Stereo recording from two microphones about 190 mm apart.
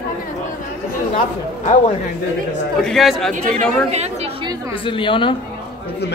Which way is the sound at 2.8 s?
Centre (ahead or behind).